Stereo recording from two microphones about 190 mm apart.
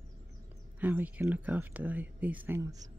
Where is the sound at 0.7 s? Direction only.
10° right (ahead or behind).